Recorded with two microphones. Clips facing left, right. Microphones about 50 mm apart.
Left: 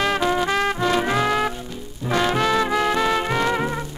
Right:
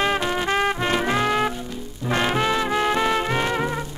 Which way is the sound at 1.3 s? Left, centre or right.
Centre.